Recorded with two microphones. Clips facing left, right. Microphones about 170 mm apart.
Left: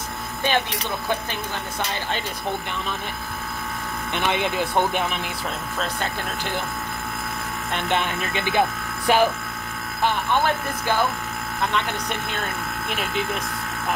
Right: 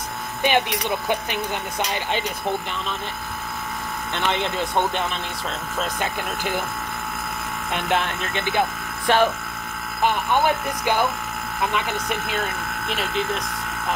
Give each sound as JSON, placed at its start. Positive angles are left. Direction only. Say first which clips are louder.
{"t": 0.4, "sound": "speech", "louder": "right 3 dB", "side_deg": -15}
{"t": 4.1, "sound": "speech", "louder": "left 1 dB", "side_deg": 10}
{"t": 5.8, "sound": "speech", "louder": "right 2 dB", "side_deg": -10}
{"t": 7.7, "sound": "speech", "louder": "right 1 dB", "side_deg": -5}
{"t": 8.3, "sound": "speech", "louder": "left 2 dB", "side_deg": 10}
{"t": 10.0, "sound": "speech", "louder": "right 2 dB", "side_deg": -15}